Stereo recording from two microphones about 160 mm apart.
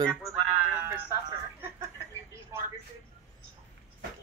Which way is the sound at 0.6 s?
15° right (ahead or behind).